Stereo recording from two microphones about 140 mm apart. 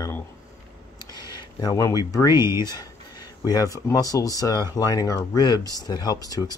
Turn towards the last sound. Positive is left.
turn(degrees=25)  # may be behind; listen again after turning